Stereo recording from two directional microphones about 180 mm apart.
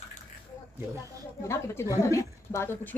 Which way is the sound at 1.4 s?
15° left (ahead or behind).